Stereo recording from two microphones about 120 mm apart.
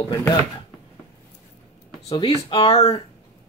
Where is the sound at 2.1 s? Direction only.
45° left (ahead or behind).